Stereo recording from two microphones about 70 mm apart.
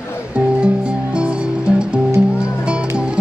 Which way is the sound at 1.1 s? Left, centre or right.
Centre.